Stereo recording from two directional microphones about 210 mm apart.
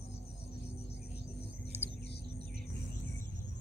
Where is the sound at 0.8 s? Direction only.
30° left (ahead or behind).